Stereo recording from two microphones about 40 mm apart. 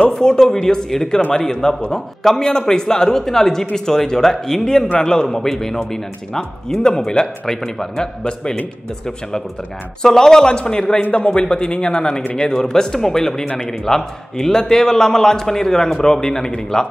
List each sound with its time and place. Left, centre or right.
0.1 s a man's voice: centre
10.0 s a man's voice: centre
11.0 s speech: left
11.2 s a man's voice: left